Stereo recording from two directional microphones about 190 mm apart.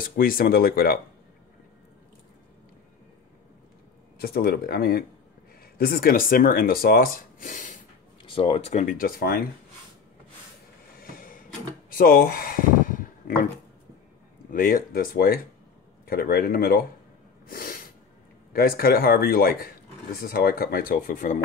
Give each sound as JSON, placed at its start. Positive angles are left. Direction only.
{"t": 0.0, "sound": "speech", "side_deg": 50}
{"t": 4.2, "sound": "speech", "side_deg": 55}
{"t": 8.3, "sound": "speech", "side_deg": 30}
{"t": 11.0, "sound": "a sound", "side_deg": 50}
{"t": 14.5, "sound": "speech", "side_deg": 50}
{"t": 17.5, "sound": "snort", "side_deg": 45}
{"t": 18.5, "sound": "speech", "side_deg": 50}